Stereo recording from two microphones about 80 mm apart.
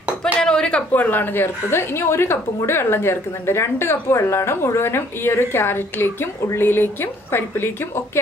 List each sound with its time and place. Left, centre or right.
0.4 s a woman's voice: centre; by 8.0 s left